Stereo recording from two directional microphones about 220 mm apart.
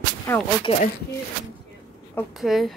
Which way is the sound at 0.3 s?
10° left (ahead or behind).